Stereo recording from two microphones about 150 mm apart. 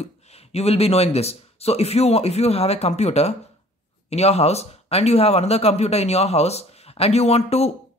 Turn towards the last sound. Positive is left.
turn(degrees=45)  # may be behind; listen again after turning